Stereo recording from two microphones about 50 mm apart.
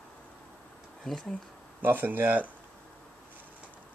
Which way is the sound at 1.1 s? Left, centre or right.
Centre.